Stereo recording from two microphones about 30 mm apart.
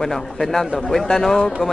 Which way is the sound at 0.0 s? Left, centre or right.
Centre.